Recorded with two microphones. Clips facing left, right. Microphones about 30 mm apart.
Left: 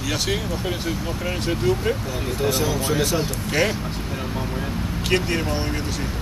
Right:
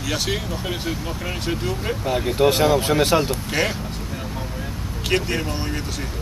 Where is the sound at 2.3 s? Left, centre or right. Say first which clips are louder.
Right 6 dB; right.